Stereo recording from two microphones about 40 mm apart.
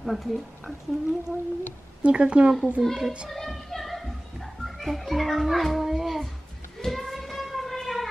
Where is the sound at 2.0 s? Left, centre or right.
Right.